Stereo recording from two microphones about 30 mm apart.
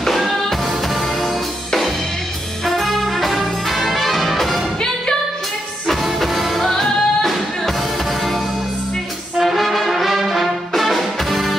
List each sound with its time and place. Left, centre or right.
0.7 s music: centre
2.6 s brass instrument: centre
6.1 s music: centre
6.7 s music: centre
7.2 s music: centre
9.4 s brass instrument: centre
10.7 s music: centre